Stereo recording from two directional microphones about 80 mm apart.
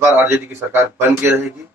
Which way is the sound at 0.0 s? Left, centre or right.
Right.